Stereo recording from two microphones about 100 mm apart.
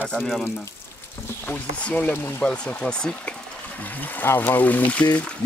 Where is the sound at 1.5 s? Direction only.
15° left (ahead or behind).